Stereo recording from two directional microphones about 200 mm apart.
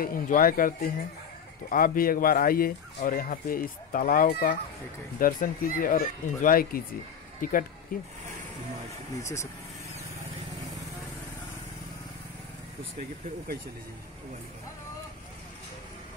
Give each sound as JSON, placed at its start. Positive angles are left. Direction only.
{"t": 0.0, "sound": "speech", "side_deg": 45}
{"t": 9.2, "sound": "speech", "side_deg": 15}